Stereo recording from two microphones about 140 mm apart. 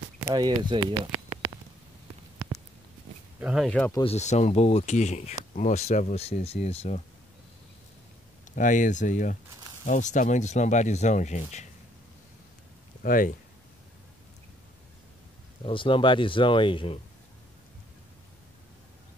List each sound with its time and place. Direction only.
0.3 s speech: 30° right (ahead or behind)
3.3 s speech: 5° right (ahead or behind)
4.0 s speech: 50° left (ahead or behind)
8.5 s speech: 65° left (ahead or behind)
13.0 s speech: 80° left
15.6 s speech: 35° left (ahead or behind)